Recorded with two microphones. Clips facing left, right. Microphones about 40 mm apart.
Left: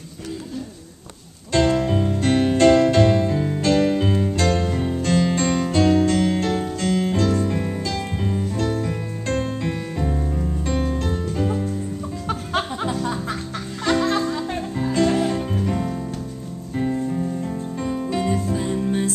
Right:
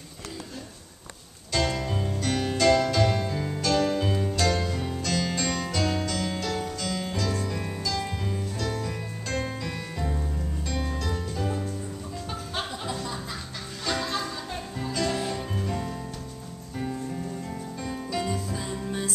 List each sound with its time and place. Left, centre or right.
1.5 s music: left
4.4 s music: left
13.0 s music: left
15.7 s music: left
17.8 s music: left